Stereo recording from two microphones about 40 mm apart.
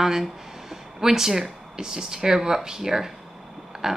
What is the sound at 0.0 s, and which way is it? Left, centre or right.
A woman's voice, centre.